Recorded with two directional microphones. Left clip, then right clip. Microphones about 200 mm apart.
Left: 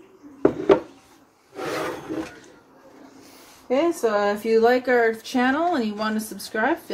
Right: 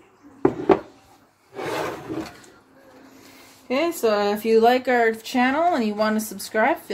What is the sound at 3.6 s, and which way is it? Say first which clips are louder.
Speech: even; 40° right (ahead or behind).